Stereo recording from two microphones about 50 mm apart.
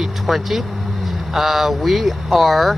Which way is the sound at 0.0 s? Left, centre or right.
Centre.